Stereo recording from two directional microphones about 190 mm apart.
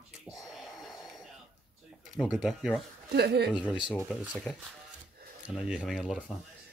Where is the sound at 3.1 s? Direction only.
60° right (ahead or behind).